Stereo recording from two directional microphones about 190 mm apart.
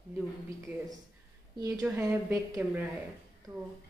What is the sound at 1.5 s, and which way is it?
A woman's voice, 20° right (ahead or behind).